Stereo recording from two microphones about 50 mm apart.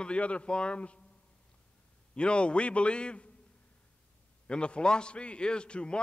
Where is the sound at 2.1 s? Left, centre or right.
Left.